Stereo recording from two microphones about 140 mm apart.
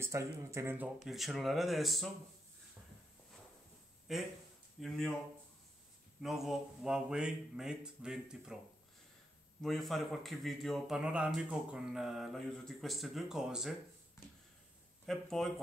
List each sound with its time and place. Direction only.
0.0 s speech: 20° right (ahead or behind)
1.0 s speech: centre (ahead or behind)
4.1 s speech: centre (ahead or behind)
6.2 s speech: centre (ahead or behind)
9.6 s speech: centre (ahead or behind)
15.0 s speech: centre (ahead or behind)